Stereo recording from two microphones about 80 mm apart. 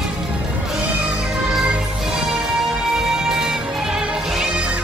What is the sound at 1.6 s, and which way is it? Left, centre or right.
Music, centre.